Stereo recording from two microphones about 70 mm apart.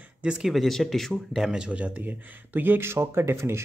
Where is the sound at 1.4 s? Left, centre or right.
Centre.